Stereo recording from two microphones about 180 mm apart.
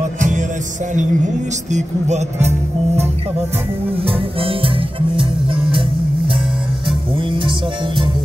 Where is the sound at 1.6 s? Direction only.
40° right (ahead or behind).